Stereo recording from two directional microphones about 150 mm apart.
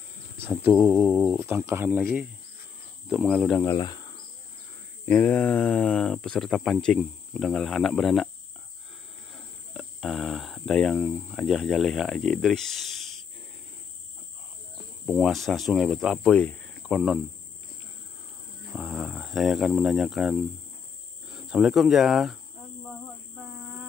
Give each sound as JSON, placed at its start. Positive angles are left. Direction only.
{"t": 0.4, "sound": "speech", "side_deg": -15}
{"t": 3.1, "sound": "speech", "side_deg": 0}
{"t": 3.6, "sound": "insect", "side_deg": 25}
{"t": 5.0, "sound": "speech", "side_deg": 10}
{"t": 9.3, "sound": "cricket", "side_deg": 0}
{"t": 15.0, "sound": "speech", "side_deg": -5}
{"t": 16.8, "sound": "cricket", "side_deg": 0}
{"t": 18.7, "sound": "cricket", "side_deg": 0}
{"t": 21.3, "sound": "speech", "side_deg": -5}